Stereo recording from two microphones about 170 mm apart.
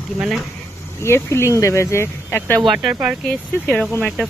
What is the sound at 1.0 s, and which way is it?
Speech, 15° left (ahead or behind).